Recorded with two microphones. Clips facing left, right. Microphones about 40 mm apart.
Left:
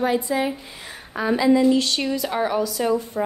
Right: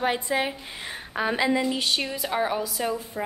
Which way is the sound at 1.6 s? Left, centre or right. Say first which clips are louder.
Left 7 dB; centre.